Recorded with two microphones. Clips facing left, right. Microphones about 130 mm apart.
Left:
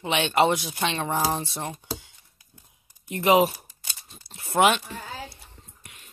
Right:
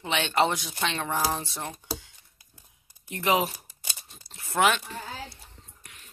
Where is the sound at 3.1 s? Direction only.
20° left (ahead or behind).